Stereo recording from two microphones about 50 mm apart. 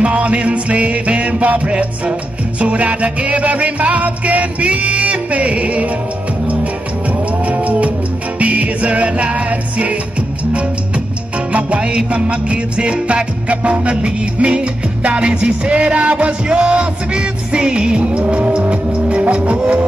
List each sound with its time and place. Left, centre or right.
0.0 s music: right
7.1 s music: right
11.5 s music: right